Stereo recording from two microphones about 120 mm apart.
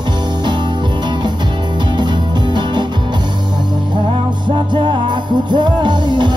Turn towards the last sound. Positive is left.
turn(degrees=-40)  # may be behind; listen again after turning